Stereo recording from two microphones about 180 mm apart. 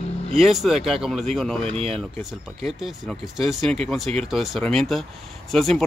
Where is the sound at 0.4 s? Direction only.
Centre (ahead or behind).